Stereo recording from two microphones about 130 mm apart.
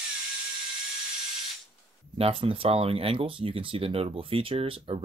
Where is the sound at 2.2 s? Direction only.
45° right (ahead or behind).